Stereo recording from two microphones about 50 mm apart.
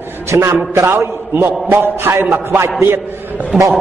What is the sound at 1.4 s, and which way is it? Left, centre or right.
A man's voice, right.